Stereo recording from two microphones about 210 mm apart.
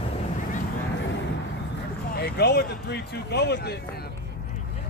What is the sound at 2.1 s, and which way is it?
Speech, 50° left (ahead or behind).